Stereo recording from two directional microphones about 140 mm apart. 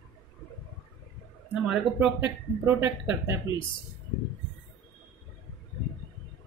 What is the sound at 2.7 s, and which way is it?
Speech, 15° right (ahead or behind).